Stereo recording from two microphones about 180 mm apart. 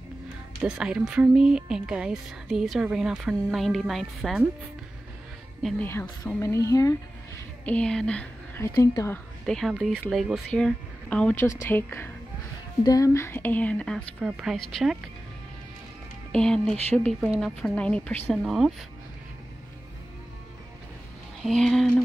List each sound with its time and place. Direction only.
0.6 s speech: 5° right (ahead or behind)
5.6 s speech: centre (ahead or behind)
5.9 s speech: 15° left (ahead or behind)
7.6 s speech: 5° left (ahead or behind)
8.7 s speech: 15° left (ahead or behind)
9.5 s speech: centre (ahead or behind)
16.3 s speech: 5° left (ahead or behind)
21.5 s speech: centre (ahead or behind)